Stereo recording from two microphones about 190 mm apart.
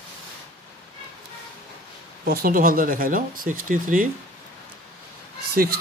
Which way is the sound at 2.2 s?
50° right (ahead or behind).